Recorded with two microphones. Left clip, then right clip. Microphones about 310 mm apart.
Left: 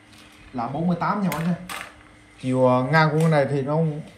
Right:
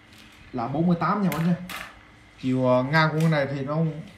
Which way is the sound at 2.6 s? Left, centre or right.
Centre.